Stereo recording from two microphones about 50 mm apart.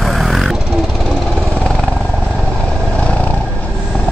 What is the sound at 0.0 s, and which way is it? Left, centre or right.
Vehicle, centre.